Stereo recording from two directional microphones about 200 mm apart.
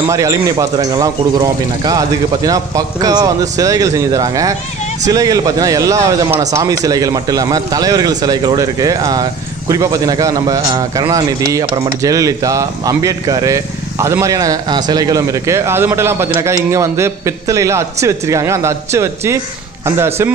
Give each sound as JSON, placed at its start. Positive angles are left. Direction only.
{"t": 0.1, "sound": "a man's voice", "side_deg": -15}